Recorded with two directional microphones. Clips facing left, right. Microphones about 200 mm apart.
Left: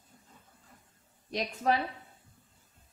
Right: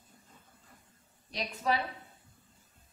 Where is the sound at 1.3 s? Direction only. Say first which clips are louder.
Left 3 dB; 50° left (ahead or behind).